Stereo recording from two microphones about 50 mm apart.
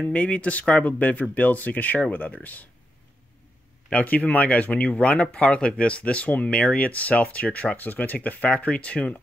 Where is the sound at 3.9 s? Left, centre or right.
Left.